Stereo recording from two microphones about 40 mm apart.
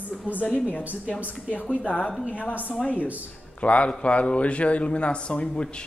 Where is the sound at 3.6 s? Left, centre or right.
Left.